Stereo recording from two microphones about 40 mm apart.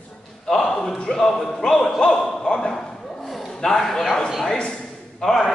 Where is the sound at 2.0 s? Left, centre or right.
Centre.